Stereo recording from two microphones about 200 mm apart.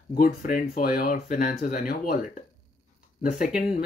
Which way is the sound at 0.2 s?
45° left (ahead or behind).